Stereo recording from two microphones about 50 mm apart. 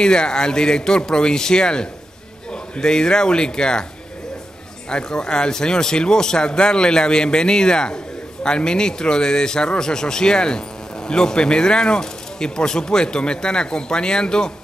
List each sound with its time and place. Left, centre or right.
0.0 s a man's voice: centre
4.8 s a man's voice: centre